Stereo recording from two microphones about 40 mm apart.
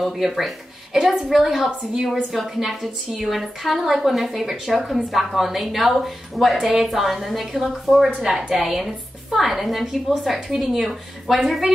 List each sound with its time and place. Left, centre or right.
0.0 s a woman's voice: centre
8.2 s a woman's voice: centre